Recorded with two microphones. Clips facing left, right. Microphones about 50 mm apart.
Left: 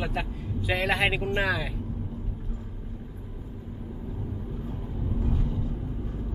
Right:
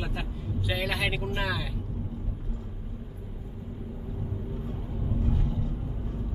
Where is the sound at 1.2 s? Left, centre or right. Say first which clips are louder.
Left 4 dB; left.